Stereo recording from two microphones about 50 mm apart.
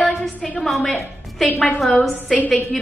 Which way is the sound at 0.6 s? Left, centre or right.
Centre.